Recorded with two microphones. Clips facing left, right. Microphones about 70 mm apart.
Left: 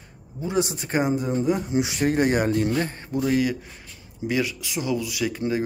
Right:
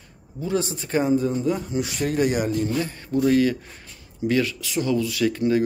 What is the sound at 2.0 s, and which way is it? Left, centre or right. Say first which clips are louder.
Speech: left 1 dB; left.